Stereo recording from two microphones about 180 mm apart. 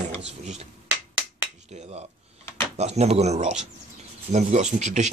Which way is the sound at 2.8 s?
35° right (ahead or behind).